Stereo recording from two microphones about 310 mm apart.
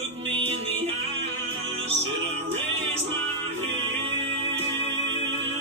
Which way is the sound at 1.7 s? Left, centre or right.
Centre.